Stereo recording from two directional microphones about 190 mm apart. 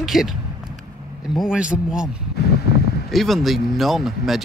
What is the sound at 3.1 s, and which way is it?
Speech, centre (ahead or behind).